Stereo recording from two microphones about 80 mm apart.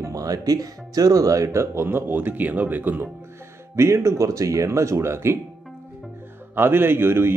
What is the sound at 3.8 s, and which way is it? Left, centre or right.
Speech, right.